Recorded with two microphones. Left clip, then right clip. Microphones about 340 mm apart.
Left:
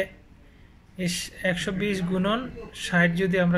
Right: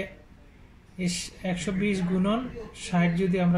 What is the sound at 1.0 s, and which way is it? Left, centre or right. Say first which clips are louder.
Speech: left 5 dB; left.